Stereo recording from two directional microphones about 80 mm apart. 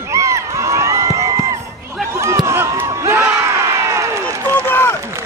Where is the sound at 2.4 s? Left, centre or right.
Right.